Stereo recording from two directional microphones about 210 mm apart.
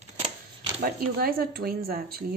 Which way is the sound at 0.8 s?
45° right (ahead or behind).